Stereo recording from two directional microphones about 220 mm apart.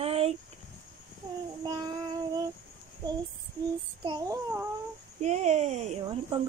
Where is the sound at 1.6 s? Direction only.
20° right (ahead or behind).